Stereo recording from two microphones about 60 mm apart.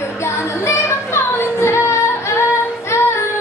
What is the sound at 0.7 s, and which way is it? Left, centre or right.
Female singing, left.